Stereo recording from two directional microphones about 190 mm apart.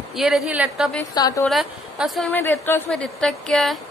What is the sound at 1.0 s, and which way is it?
Speech, 20° left (ahead or behind).